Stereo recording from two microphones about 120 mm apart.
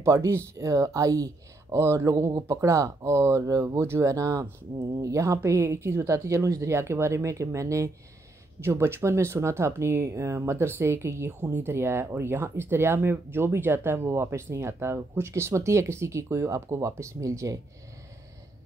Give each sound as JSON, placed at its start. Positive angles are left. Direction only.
{"t": 0.0, "sound": "speech", "side_deg": -25}